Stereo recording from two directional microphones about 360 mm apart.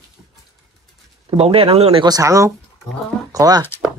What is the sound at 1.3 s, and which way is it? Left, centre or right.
Speech, centre.